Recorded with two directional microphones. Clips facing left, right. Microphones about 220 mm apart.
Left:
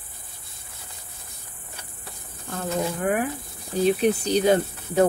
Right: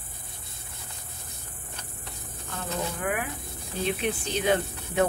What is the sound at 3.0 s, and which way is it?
Speech, 40° left (ahead or behind).